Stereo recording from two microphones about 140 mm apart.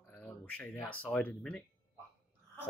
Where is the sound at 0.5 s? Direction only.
10° left (ahead or behind).